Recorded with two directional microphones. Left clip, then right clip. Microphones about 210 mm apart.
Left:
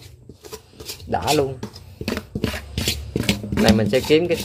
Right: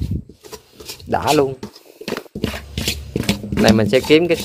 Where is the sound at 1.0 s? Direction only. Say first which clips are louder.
Right 4 dB; 25° right (ahead or behind).